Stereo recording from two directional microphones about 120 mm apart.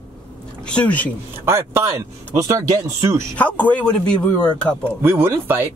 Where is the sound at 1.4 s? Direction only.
20° right (ahead or behind).